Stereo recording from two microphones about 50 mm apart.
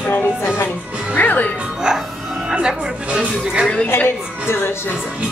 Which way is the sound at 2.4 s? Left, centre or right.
Centre.